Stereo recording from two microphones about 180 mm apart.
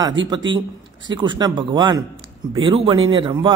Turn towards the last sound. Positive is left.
turn(degrees=-25)  # may be behind; listen again after turning